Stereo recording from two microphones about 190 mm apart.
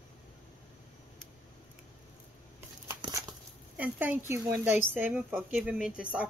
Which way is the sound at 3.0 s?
20° right (ahead or behind).